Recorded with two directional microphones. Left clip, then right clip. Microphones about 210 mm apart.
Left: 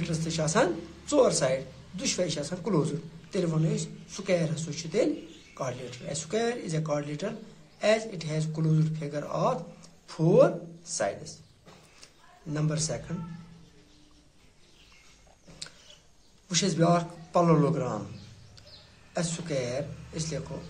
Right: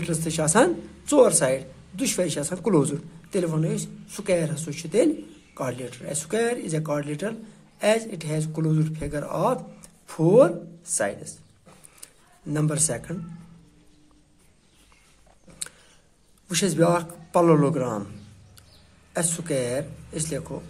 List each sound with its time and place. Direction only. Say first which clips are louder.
0.0 s speech: right 5 dB; 50° right (ahead or behind)
12.4 s speech: right 5 dB; 50° right (ahead or behind)
16.4 s speech: right 4 dB; 45° right (ahead or behind)
19.4 s speech: right 6 dB; 45° right (ahead or behind)